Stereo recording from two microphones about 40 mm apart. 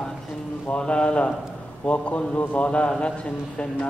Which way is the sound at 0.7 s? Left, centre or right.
Left.